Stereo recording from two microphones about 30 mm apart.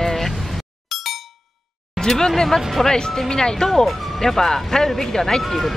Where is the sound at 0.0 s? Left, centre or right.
Centre.